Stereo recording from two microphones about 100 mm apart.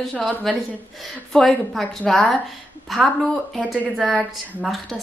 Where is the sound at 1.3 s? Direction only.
5° left (ahead or behind).